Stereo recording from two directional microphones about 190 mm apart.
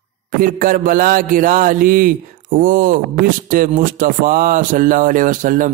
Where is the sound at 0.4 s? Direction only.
45° right (ahead or behind).